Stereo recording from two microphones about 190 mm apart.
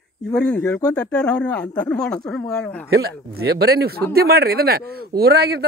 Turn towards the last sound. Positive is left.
turn(degrees=-55)  # may be behind; listen again after turning